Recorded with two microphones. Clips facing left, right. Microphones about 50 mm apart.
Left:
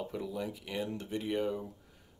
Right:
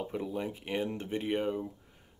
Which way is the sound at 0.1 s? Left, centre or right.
Right.